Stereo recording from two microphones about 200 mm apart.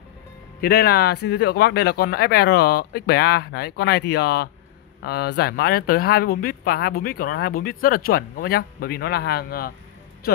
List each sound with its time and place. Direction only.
0.6 s speech: 50° left (ahead or behind)